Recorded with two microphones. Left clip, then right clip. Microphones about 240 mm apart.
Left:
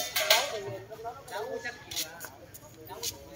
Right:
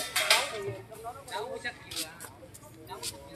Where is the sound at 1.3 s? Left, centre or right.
Right.